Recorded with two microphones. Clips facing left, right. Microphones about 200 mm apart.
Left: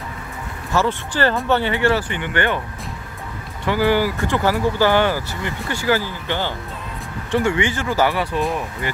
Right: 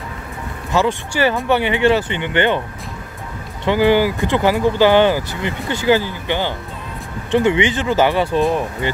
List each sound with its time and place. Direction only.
0.7 s speech: 10° right (ahead or behind)
3.6 s speech: 20° right (ahead or behind)